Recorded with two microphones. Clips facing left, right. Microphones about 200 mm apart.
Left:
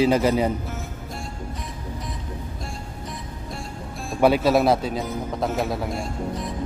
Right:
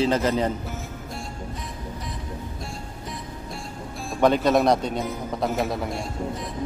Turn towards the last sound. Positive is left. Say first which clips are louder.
# left 1 dB
turn(degrees=0)  # may be behind; listen again after turning